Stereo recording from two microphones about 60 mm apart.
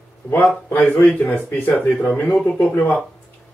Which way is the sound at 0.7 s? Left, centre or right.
Left.